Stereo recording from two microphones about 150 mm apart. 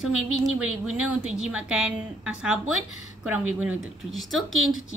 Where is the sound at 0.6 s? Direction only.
5° right (ahead or behind).